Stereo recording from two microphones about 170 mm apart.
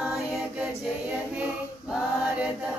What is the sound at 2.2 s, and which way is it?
Speech, 5° right (ahead or behind).